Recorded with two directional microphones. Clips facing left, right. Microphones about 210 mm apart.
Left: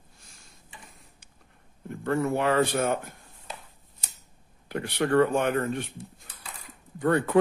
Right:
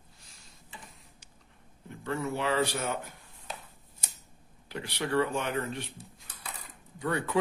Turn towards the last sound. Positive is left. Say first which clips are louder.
# left 7 dB
turn(degrees=50)  # may be behind; listen again after turning